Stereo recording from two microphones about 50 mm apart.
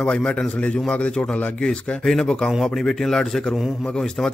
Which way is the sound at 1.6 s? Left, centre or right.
Centre.